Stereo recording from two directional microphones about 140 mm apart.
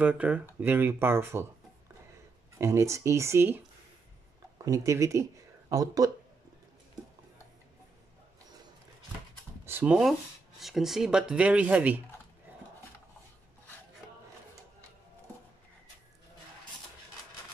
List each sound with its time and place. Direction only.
0.0 s speech: 10° right (ahead or behind)
2.6 s speech: 20° right (ahead or behind)
4.6 s speech: 20° right (ahead or behind)
9.7 s speech: 10° right (ahead or behind)